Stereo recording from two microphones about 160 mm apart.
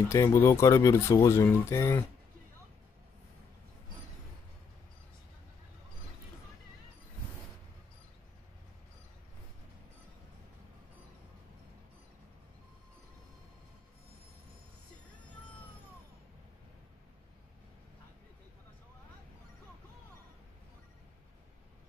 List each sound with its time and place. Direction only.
0.1 s speech: 20° left (ahead or behind)